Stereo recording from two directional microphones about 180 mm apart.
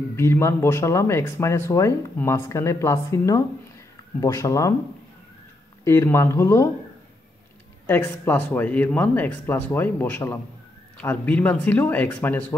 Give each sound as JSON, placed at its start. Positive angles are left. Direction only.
{"t": 0.1, "sound": "speech", "side_deg": 15}
{"t": 5.9, "sound": "speech", "side_deg": 15}
{"t": 7.8, "sound": "speech", "side_deg": 10}